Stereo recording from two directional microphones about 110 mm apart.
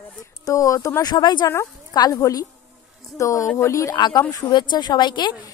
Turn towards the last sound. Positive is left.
turn(degrees=40)  # may be behind; listen again after turning